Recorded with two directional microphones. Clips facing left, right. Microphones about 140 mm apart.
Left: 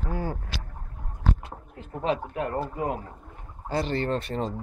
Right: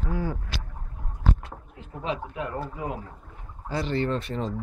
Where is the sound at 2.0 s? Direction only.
45° left (ahead or behind).